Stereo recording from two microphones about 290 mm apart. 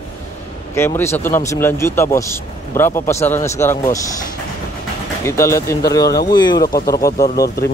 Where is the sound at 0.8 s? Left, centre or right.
Centre.